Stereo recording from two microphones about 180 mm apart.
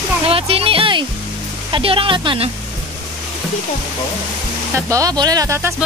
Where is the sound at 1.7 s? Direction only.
30° right (ahead or behind).